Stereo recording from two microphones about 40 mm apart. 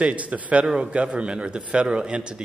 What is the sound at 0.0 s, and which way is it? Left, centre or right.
A man's voice, right.